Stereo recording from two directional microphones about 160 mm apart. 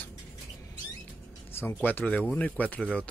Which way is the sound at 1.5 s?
15° left (ahead or behind).